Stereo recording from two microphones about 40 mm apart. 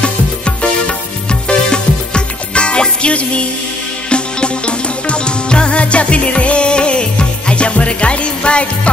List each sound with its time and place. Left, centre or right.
0.0 s music: left